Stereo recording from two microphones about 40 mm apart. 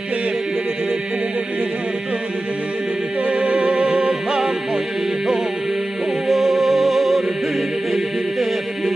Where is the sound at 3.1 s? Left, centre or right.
Right.